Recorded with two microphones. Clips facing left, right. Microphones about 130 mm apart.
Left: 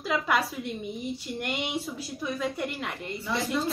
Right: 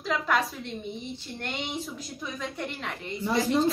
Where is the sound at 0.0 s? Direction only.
5° left (ahead or behind).